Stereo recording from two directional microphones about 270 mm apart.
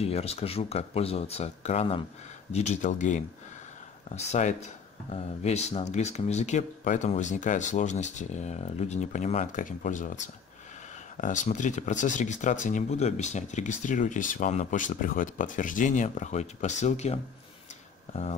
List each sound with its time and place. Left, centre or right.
0.0 s speech: left